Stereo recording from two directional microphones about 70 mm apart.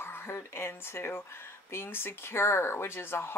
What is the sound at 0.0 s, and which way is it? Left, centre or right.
Speech, left.